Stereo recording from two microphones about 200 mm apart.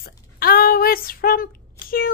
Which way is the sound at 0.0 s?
45° left (ahead or behind).